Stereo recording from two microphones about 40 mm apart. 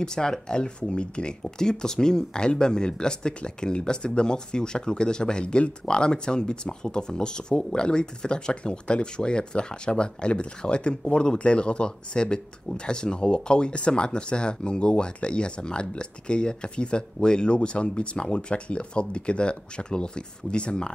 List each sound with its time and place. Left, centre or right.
0.0 s speech: centre